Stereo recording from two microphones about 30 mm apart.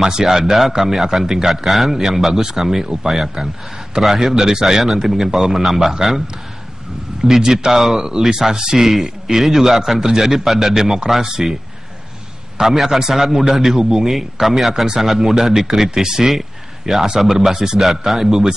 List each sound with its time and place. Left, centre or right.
0.0 s a man's voice: centre
1.7 s a man's voice: centre
7.2 s a man's voice: centre
7.7 s a man's voice: centre
8.0 s a man's voice: centre
12.7 s a man's voice: centre